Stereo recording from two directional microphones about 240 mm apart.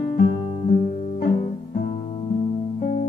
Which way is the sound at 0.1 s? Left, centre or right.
Left.